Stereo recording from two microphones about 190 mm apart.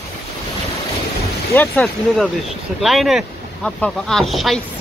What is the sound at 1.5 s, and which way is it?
Speech, 10° left (ahead or behind).